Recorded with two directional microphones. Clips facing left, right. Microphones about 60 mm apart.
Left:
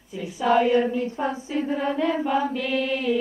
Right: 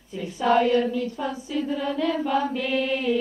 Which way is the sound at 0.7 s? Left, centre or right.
Left.